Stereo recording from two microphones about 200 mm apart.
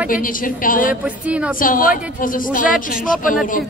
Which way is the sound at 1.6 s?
45° left (ahead or behind).